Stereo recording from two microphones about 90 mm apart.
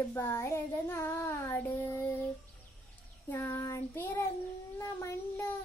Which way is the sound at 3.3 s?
30° left (ahead or behind).